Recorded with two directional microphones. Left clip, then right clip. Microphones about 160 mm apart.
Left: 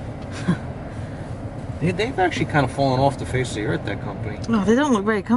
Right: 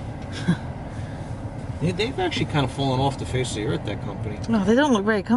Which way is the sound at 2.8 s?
50° left (ahead or behind).